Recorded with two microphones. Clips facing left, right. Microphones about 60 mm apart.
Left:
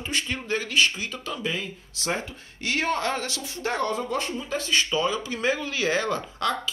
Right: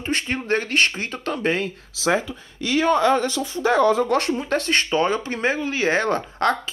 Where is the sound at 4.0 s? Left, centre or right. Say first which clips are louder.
Right 8 dB; right.